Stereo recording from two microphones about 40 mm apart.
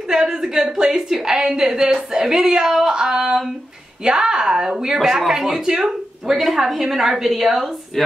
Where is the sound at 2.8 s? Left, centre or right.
Centre.